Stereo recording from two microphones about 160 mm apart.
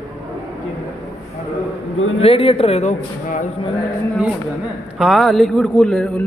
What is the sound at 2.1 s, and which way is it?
A man's voice, 35° left (ahead or behind).